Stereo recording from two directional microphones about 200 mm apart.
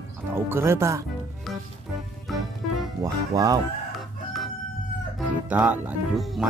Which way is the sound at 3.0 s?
15° right (ahead or behind).